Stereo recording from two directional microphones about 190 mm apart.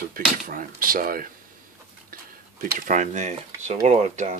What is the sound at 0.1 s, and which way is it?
Speech, 45° right (ahead or behind).